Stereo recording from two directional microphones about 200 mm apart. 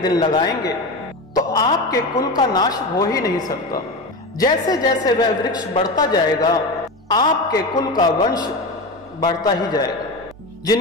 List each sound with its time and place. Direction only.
0.0 s a woman's voice: 20° left (ahead or behind)